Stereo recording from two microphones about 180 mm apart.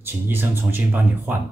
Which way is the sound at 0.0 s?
10° right (ahead or behind).